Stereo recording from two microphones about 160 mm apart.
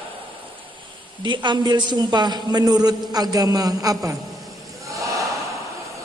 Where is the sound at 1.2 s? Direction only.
30° right (ahead or behind).